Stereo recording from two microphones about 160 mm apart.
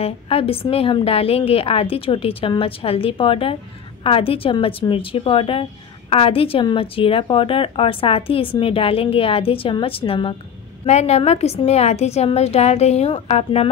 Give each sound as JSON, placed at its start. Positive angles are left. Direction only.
{"t": 0.0, "sound": "a woman's voice", "side_deg": 40}